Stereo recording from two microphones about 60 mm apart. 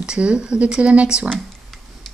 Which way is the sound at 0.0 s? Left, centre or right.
Centre.